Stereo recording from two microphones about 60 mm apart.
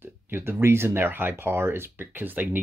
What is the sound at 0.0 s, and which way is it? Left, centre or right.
Speech, right.